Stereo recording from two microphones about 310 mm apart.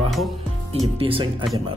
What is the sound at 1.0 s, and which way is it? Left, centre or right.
Speech, centre.